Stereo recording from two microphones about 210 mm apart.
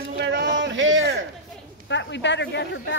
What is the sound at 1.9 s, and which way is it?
Speech, 55° left (ahead or behind).